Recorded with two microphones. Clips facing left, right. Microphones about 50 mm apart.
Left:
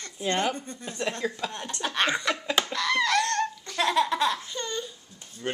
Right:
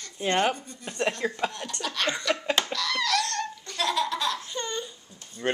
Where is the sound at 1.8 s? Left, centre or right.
Left.